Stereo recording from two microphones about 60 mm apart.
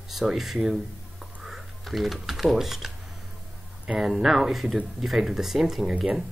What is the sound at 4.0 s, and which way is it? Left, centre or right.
Speech, centre.